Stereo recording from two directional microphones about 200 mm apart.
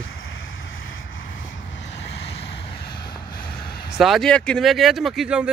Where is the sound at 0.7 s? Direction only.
80° left; by 2.1 s 60° left (ahead or behind).